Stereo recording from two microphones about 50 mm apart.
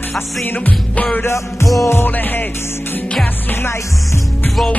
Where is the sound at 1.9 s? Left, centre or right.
Left.